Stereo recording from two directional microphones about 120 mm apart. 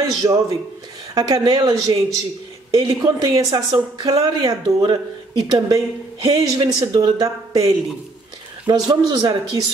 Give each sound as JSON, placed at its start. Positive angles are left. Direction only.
{"t": 0.2, "sound": "a man's voice", "side_deg": -30}